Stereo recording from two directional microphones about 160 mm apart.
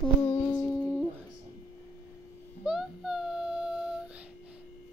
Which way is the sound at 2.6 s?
5° right (ahead or behind).